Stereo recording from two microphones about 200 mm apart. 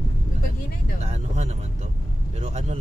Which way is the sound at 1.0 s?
35° right (ahead or behind).